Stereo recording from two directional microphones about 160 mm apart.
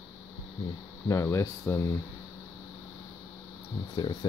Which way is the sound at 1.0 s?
20° left (ahead or behind).